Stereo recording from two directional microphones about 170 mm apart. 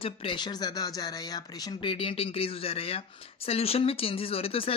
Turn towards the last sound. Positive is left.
turn(degrees=35)  # may be behind; listen again after turning